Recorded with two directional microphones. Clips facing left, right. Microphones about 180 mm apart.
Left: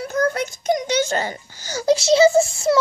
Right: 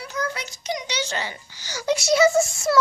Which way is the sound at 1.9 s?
30° left (ahead or behind).